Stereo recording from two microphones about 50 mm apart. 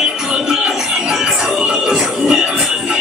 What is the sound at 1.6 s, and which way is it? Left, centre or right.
Music, centre.